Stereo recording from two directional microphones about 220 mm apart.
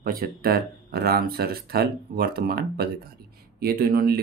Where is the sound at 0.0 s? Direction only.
40° right (ahead or behind).